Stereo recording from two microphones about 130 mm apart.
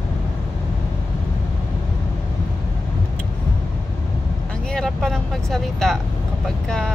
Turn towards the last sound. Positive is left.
turn(degrees=5)  # may be behind; listen again after turning